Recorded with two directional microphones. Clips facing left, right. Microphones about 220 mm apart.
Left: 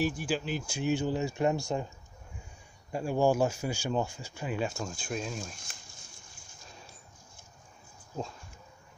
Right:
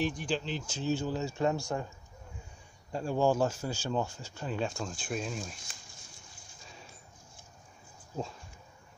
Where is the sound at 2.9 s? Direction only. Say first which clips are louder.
Left 1 dB; 10° left (ahead or behind).